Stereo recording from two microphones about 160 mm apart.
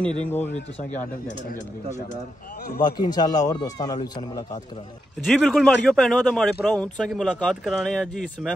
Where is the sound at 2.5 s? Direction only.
75° left (ahead or behind).